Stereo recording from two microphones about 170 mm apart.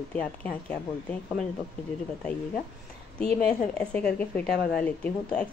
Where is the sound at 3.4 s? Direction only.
5° left (ahead or behind).